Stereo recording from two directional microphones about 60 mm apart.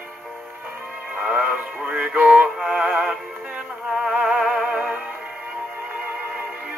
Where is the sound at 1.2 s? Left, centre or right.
Centre.